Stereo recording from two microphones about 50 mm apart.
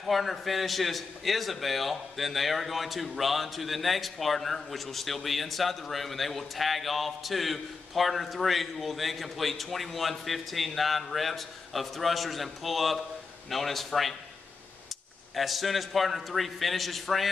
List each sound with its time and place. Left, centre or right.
0.0 s a man's voice: centre
15.3 s a man's voice: centre